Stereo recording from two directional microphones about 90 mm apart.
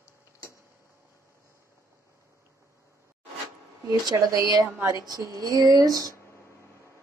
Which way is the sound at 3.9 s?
45° right (ahead or behind).